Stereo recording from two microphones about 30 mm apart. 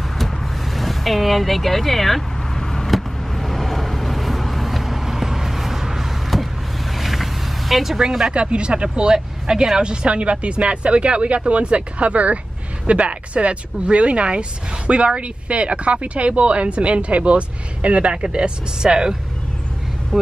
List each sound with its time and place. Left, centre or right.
0.7 s speech: centre
2.5 s vehicle: centre
2.9 s vehicle: centre
8.3 s speech: right
9.8 s speech: right
18.8 s speech: right